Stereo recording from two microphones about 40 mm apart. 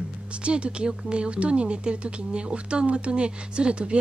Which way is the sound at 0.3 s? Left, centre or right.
Right.